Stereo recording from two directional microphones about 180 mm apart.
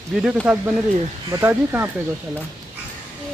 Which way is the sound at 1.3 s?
15° right (ahead or behind).